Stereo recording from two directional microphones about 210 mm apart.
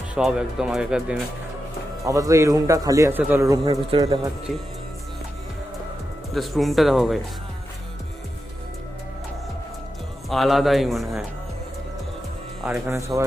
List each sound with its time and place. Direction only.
0.1 s speech: 5° right (ahead or behind)
2.0 s a man's voice: 15° right (ahead or behind)
6.3 s speech: centre (ahead or behind)
10.3 s speech: centre (ahead or behind)
12.6 s speech: 5° right (ahead or behind)